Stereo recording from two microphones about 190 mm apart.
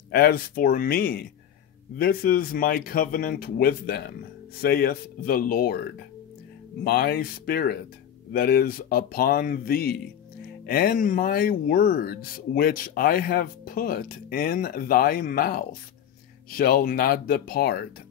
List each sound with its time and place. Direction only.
0.1 s speech: 50° left (ahead or behind)